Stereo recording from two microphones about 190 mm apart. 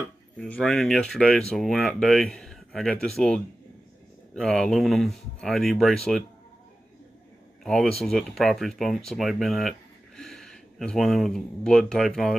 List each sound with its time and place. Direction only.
0.4 s speech: 5° left (ahead or behind)
4.4 s speech: 5° left (ahead or behind)
7.6 s speech: centre (ahead or behind)